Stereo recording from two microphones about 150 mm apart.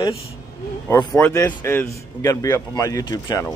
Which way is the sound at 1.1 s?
10° left (ahead or behind).